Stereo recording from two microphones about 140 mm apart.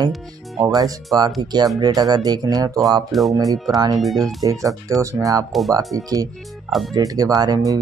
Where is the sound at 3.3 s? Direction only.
25° right (ahead or behind).